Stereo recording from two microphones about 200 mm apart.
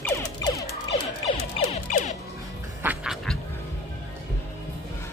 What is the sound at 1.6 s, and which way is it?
Music, 35° left (ahead or behind).